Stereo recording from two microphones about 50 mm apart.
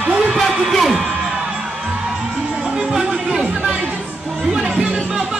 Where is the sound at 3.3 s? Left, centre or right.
Centre.